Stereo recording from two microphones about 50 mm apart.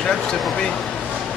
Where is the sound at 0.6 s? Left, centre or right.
Centre.